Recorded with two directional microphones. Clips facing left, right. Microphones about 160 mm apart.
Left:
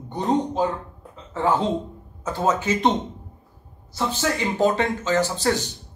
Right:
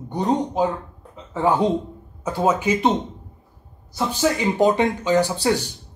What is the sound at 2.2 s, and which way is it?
Speech, 10° right (ahead or behind).